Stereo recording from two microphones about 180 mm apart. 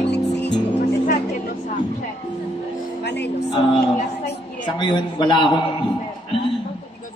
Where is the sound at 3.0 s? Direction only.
70° left (ahead or behind).